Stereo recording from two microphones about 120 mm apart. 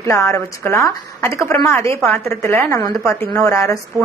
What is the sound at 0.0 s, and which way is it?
A woman's voice, 25° left (ahead or behind).